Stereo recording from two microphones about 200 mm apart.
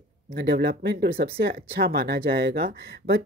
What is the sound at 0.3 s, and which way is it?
Speech, 50° right (ahead or behind).